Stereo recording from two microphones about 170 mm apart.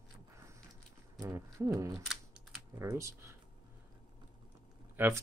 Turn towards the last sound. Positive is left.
turn(degrees=-10)  # may be behind; listen again after turning